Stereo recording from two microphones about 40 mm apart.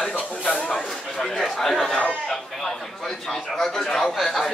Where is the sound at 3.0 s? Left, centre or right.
Centre.